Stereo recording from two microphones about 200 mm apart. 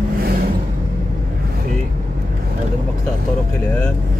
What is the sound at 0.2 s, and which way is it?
Vehicle, 50° right (ahead or behind).